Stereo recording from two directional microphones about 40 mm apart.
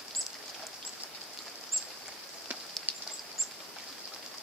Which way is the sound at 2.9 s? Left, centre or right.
Right.